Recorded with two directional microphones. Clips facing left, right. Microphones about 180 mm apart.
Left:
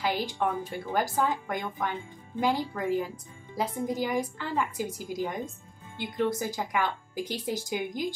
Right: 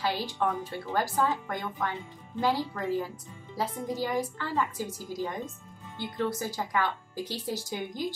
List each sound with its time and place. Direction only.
0.0 s speech: 15° left (ahead or behind)